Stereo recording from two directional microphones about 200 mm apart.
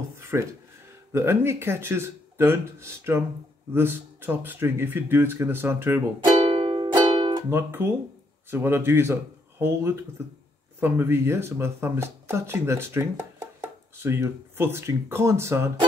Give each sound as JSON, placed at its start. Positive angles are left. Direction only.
{"t": 0.3, "sound": "speech", "side_deg": -10}
{"t": 6.4, "sound": "music", "side_deg": -25}
{"t": 7.4, "sound": "speech", "side_deg": -10}